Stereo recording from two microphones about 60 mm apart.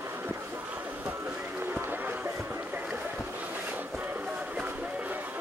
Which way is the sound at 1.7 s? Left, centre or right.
Right.